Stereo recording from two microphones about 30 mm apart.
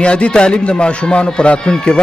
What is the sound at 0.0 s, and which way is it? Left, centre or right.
Speech, left.